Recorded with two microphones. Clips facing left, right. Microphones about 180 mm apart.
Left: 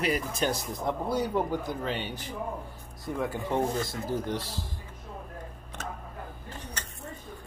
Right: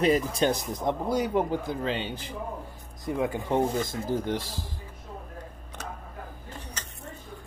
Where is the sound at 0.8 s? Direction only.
15° right (ahead or behind).